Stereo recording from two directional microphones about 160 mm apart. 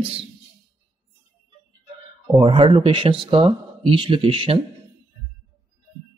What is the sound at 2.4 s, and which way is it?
Speech, 30° right (ahead or behind).